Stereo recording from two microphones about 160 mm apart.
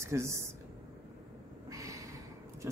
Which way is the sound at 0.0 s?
15° right (ahead or behind).